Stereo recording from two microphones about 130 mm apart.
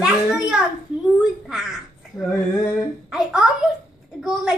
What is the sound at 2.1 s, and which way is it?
Female singing, 25° left (ahead or behind).